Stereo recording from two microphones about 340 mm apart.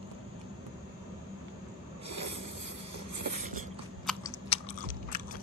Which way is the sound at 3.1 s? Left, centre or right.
Right.